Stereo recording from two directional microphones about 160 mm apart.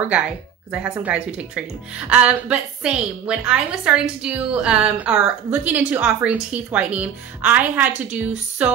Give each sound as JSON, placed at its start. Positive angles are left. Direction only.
{"t": 0.7, "sound": "a woman's voice", "side_deg": -5}